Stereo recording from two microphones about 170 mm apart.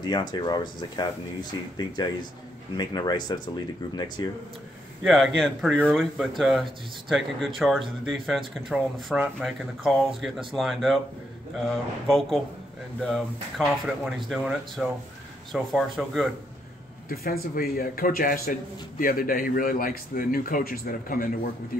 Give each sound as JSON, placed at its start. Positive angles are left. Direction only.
{"t": 0.0, "sound": "speech", "side_deg": 25}
{"t": 5.0, "sound": "speech", "side_deg": 0}
{"t": 17.1, "sound": "speech", "side_deg": 60}